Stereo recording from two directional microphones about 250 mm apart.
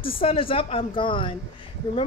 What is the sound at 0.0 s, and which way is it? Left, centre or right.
A woman's voice, left.